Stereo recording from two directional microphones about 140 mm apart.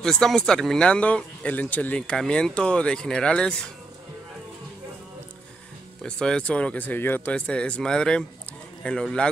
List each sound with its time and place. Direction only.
0.0 s speech: 5° left (ahead or behind)
6.0 s speech: 5° left (ahead or behind)